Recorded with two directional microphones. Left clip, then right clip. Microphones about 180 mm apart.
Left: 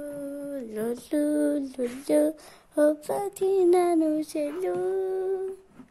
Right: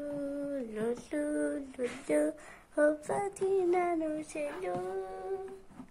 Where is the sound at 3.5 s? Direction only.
90° left; by 5.3 s 65° left (ahead or behind).